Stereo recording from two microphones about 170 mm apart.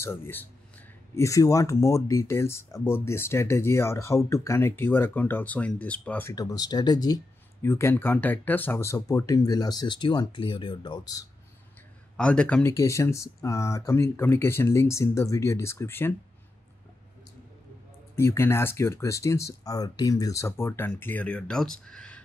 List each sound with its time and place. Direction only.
0.0 s speech: 15° left (ahead or behind)
12.2 s speech: 5° left (ahead or behind)
12.7 s speech: 15° left (ahead or behind)
18.1 s speech: 15° left (ahead or behind)